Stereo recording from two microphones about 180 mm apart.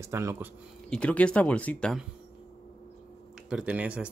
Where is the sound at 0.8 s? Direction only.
5° left (ahead or behind).